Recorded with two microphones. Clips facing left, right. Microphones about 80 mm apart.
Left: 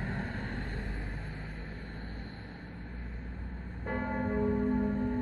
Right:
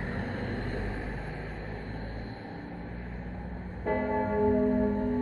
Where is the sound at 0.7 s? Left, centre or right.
Right.